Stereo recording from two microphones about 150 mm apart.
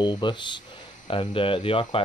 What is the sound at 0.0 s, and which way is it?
Speech, 30° left (ahead or behind).